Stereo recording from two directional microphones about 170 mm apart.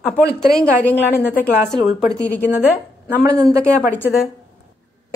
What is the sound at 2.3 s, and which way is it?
Speech, 10° left (ahead or behind).